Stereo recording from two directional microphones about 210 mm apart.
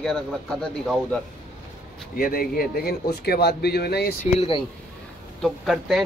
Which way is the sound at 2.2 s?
45° left (ahead or behind).